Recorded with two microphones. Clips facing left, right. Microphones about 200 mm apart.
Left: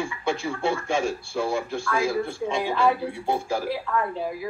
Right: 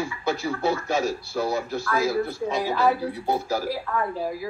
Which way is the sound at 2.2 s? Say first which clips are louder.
Right 1 dB; 30° left (ahead or behind).